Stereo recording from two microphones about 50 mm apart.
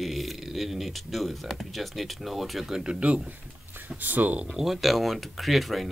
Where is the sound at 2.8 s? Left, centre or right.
Centre.